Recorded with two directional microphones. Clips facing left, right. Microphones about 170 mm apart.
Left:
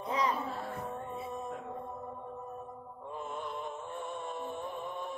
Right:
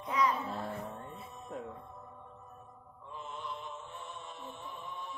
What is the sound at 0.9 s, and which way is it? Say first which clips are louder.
Music: left 7 dB; 55° left (ahead or behind).